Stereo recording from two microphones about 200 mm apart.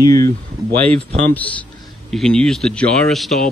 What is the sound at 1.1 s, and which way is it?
Speech, 35° right (ahead or behind).